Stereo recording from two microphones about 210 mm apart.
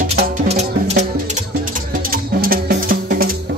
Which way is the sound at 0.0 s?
50° right (ahead or behind).